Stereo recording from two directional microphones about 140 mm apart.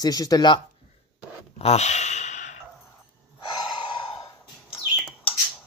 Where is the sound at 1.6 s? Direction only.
50° left (ahead or behind).